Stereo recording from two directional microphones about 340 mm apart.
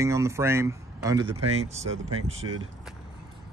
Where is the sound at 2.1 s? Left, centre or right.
Right.